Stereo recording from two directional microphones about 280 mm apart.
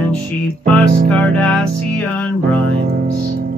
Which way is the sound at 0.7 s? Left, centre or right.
Centre.